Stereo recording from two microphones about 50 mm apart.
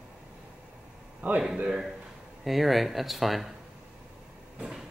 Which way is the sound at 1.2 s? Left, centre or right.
Right.